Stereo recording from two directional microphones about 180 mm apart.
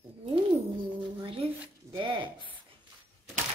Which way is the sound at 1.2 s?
30° right (ahead or behind).